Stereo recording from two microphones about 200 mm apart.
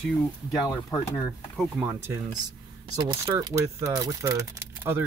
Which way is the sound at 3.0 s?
25° right (ahead or behind).